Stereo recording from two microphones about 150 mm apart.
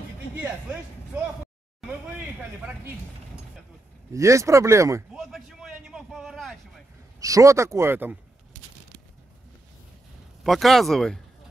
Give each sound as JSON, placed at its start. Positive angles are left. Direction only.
{"t": 4.1, "sound": "speech", "side_deg": -20}
{"t": 5.1, "sound": "a sound", "side_deg": 0}
{"t": 7.2, "sound": "speech", "side_deg": -20}
{"t": 10.4, "sound": "speech", "side_deg": 0}